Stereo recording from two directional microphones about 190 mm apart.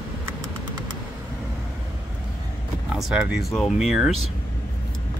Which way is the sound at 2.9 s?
Centre (ahead or behind).